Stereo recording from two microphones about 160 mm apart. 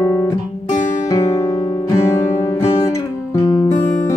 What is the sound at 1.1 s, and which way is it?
Music, 20° left (ahead or behind).